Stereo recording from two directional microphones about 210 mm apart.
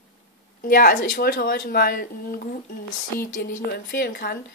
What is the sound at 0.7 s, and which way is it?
Speech, 45° left (ahead or behind).